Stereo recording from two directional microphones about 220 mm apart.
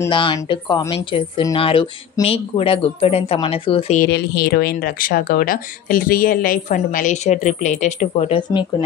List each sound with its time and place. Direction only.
0.0 s speech: 20° left (ahead or behind)
4.0 s speech: 45° left (ahead or behind); by 8.6 s 30° left (ahead or behind)